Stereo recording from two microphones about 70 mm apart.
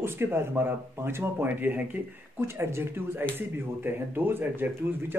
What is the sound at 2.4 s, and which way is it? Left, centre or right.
A man's voice, right.